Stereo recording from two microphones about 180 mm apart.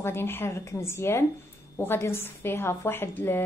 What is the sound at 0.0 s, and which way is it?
A woman's voice, 15° left (ahead or behind).